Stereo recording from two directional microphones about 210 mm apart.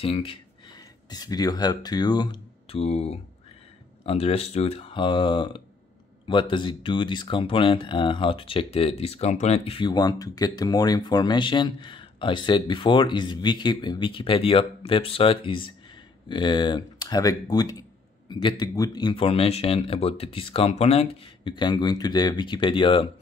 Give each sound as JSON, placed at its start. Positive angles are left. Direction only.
{"t": 0.0, "sound": "speech", "side_deg": 25}